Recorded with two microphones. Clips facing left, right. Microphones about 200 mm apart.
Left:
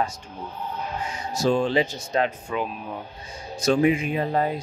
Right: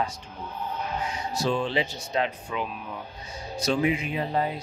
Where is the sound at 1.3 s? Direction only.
45° left (ahead or behind).